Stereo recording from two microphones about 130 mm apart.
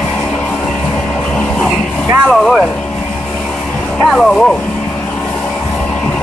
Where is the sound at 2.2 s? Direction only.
Centre (ahead or behind).